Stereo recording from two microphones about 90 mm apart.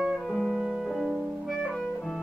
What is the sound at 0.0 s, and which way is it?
Music, centre (ahead or behind).